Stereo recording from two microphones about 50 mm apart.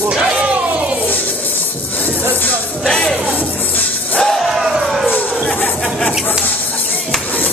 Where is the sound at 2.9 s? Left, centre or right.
Centre.